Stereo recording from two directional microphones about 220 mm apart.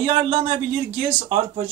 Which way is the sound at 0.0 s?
25° right (ahead or behind).